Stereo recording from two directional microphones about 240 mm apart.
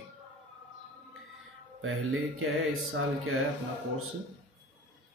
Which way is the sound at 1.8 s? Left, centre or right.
Right.